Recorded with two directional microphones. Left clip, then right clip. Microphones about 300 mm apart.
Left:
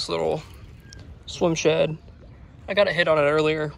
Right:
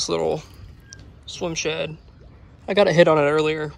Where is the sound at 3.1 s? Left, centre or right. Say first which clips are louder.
Right 2 dB; centre.